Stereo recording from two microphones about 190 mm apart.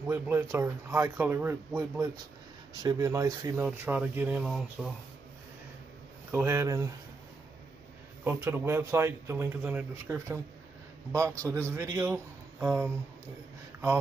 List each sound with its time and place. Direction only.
0.0 s speech: 10° right (ahead or behind)
2.7 s speech: 20° right (ahead or behind); by 4.9 s centre (ahead or behind)
6.3 s speech: 15° right (ahead or behind)
8.2 s speech: 10° right (ahead or behind)